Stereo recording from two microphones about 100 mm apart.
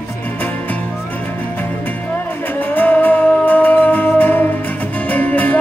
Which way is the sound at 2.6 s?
20° left (ahead or behind).